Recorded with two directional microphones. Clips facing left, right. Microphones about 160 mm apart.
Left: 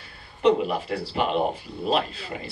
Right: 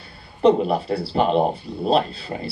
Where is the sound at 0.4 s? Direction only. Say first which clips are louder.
Right 4 dB; 35° right (ahead or behind).